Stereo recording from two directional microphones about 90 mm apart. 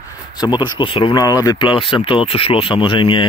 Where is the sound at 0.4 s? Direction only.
55° left (ahead or behind).